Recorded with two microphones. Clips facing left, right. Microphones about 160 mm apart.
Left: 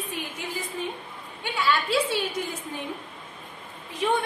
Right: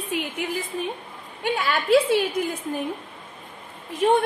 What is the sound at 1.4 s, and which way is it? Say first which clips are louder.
Speech: right 3 dB; 50° right (ahead or behind).